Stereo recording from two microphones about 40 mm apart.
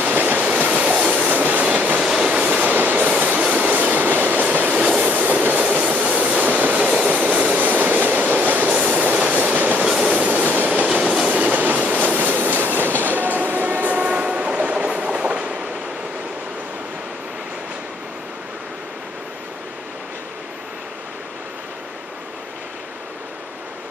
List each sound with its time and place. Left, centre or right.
0.1 s train: right
1.3 s train: right
2.0 s train: centre
2.3 s train: right
4.7 s train: right
5.1 s train: right
7.6 s train: right
8.7 s train: right
9.3 s train: right
9.8 s train: right
10.1 s train: right
14.0 s train: right